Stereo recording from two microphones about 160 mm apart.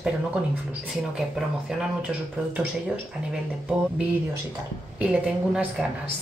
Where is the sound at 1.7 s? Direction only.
5° right (ahead or behind).